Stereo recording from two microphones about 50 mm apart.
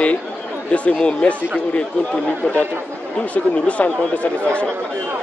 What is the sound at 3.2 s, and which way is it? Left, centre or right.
Speech, left.